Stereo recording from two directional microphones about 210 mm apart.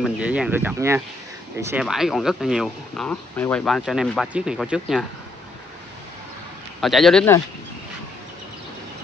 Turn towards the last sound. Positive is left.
turn(degrees=5)  # may be behind; listen again after turning